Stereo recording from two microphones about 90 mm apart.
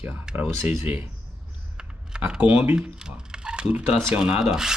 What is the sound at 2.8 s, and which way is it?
Speech, 10° right (ahead or behind).